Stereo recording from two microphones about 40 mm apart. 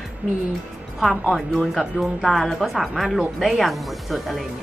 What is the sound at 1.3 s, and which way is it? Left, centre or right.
Speech, right.